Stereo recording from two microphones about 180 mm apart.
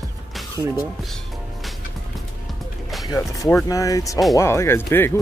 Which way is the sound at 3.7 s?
20° left (ahead or behind).